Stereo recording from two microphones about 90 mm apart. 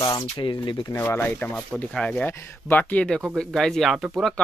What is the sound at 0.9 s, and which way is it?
Speech, 25° left (ahead or behind).